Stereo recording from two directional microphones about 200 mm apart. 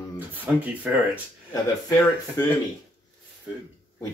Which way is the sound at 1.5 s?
15° left (ahead or behind).